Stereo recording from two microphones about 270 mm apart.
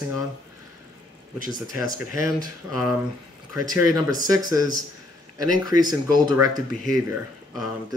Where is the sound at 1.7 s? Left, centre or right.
Left.